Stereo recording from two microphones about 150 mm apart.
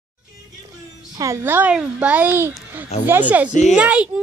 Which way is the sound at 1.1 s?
20° right (ahead or behind).